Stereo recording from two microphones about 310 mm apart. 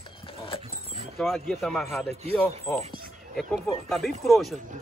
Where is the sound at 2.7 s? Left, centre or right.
Centre.